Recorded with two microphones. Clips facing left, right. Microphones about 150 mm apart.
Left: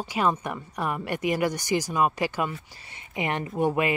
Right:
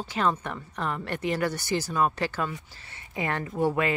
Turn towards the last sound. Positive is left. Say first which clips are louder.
# left 1 dB
turn(degrees=15)  # may be behind; listen again after turning